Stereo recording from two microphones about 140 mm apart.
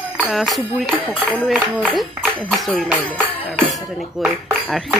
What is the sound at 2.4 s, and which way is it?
Speech, 5° left (ahead or behind).